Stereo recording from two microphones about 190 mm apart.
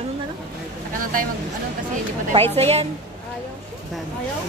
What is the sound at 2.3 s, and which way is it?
Speech, 30° right (ahead or behind).